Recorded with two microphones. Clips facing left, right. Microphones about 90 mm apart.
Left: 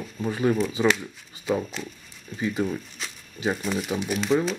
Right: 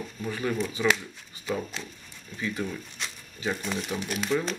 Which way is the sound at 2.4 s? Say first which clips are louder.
Left 5 dB; 20° left (ahead or behind).